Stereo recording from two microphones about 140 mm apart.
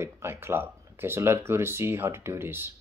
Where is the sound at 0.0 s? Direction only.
15° right (ahead or behind).